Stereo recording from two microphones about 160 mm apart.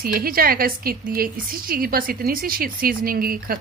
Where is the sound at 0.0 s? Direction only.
70° right (ahead or behind).